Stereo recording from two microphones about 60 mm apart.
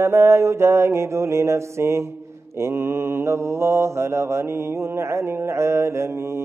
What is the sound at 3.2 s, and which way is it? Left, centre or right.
Mantra, right.